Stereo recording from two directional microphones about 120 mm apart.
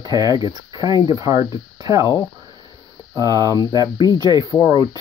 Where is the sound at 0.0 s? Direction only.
35° right (ahead or behind).